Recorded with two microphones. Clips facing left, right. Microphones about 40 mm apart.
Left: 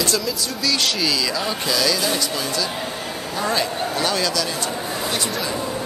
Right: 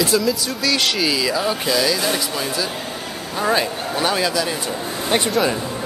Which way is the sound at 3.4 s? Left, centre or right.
Centre.